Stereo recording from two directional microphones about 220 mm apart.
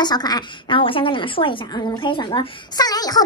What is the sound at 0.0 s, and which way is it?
A woman's voice, 20° left (ahead or behind).